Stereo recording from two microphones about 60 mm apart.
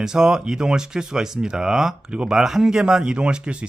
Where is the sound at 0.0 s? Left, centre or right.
Centre.